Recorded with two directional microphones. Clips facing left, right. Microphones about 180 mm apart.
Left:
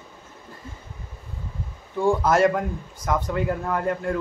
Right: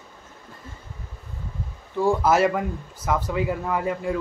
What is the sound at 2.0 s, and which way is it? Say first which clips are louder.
Speech: even; 5° right (ahead or behind).